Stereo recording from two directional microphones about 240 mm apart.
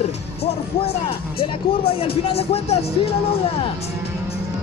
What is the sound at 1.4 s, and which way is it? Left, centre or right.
Speech, left.